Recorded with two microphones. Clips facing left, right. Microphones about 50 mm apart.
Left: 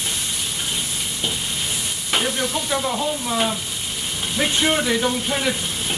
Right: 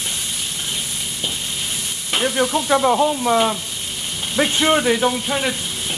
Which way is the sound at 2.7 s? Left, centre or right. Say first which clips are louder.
Right 9 dB; right.